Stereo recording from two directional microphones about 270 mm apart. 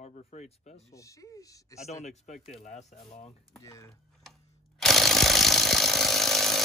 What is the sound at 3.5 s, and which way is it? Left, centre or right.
Speech, centre.